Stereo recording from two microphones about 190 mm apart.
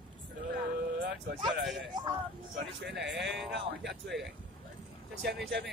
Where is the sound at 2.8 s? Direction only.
65° right (ahead or behind).